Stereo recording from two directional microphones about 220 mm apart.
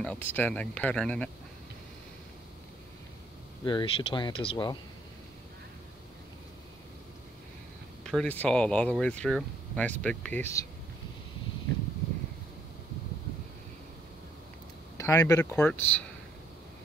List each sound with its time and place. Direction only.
0.0 s speech: 5° left (ahead or behind)
3.6 s speech: 20° left (ahead or behind)
8.0 s speech: 5° left (ahead or behind)
15.0 s speech: 15° left (ahead or behind)